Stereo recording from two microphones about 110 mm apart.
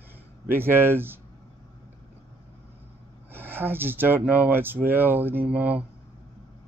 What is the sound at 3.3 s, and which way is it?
Speech, 20° right (ahead or behind).